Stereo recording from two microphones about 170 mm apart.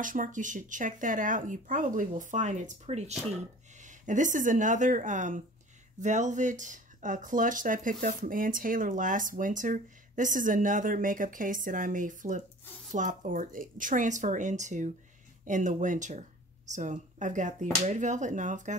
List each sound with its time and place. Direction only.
0.0 s speech: 50° right (ahead or behind)